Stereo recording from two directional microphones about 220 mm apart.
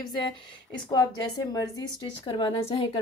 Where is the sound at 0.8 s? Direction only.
20° left (ahead or behind).